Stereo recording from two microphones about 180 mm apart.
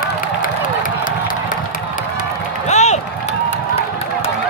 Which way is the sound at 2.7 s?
40° left (ahead or behind).